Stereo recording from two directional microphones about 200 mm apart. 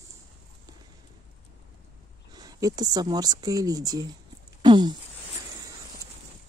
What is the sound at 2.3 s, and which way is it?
Speech, 20° right (ahead or behind).